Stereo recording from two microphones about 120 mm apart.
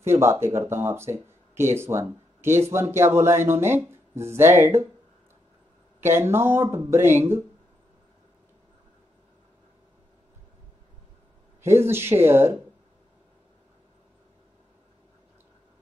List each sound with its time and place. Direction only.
0.0 s speech: 20° right (ahead or behind)
5.9 s speech: 20° right (ahead or behind)
11.6 s speech: 20° right (ahead or behind)